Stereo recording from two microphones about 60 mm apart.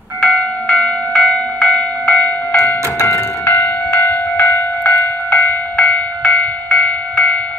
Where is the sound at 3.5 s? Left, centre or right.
Left.